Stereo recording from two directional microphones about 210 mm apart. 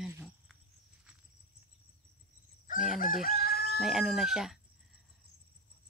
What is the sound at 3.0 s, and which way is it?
Chicken, 40° left (ahead or behind).